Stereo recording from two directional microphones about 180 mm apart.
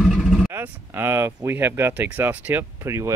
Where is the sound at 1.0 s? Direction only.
15° right (ahead or behind).